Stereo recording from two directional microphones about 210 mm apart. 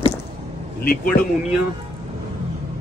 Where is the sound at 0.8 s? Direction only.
45° left (ahead or behind).